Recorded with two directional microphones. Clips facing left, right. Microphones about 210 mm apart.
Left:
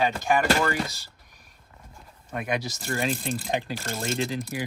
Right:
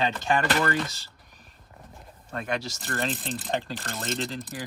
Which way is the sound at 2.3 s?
15° left (ahead or behind).